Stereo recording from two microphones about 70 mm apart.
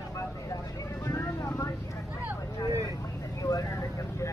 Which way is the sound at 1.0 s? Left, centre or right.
Left.